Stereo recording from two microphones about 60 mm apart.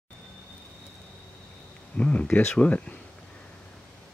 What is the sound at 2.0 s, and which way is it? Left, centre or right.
Speech, left.